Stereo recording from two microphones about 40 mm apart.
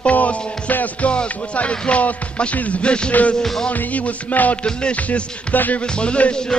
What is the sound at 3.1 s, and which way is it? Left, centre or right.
Music, left.